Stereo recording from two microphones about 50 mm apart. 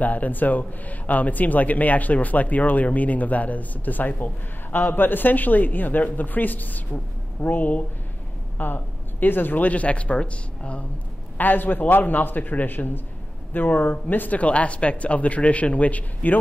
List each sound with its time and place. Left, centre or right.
0.0 s speech: left
11.3 s speech: left